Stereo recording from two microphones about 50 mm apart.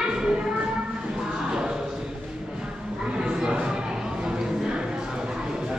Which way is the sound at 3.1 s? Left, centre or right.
Centre.